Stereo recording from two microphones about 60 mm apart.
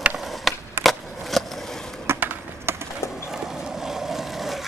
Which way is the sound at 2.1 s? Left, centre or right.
Right.